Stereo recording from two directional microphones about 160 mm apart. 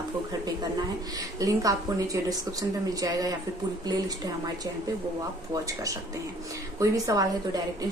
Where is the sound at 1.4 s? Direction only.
20° right (ahead or behind).